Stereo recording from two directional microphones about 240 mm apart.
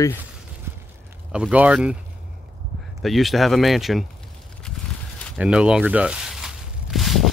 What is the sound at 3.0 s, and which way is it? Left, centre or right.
Speech, centre.